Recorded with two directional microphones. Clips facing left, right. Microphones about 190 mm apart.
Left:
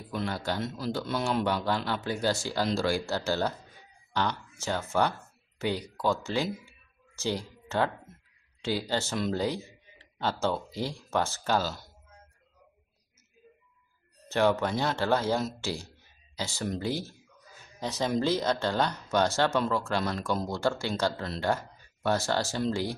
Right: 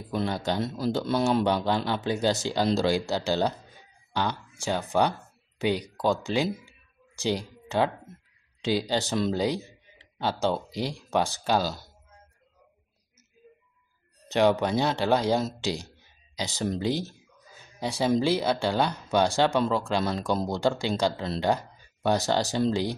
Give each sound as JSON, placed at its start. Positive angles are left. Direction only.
{"t": 0.1, "sound": "speech", "side_deg": -25}
{"t": 1.4, "sound": "speech", "side_deg": -20}
{"t": 14.3, "sound": "speech", "side_deg": -15}